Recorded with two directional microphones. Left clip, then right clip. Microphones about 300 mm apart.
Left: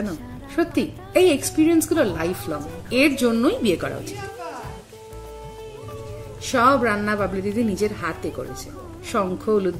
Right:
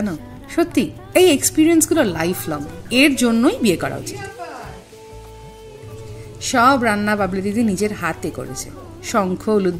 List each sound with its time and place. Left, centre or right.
0.6 s a woman's voice: right
6.4 s a woman's voice: right